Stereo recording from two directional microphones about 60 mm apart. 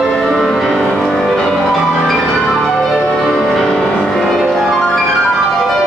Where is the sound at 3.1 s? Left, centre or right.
Centre.